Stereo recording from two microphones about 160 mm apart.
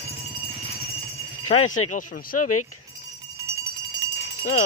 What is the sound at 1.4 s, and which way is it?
Speech, 50° left (ahead or behind).